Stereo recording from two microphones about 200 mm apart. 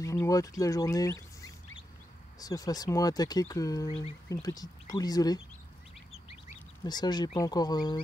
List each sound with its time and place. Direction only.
0.0 s speech: 15° left (ahead or behind)
6.8 s speech: 20° left (ahead or behind)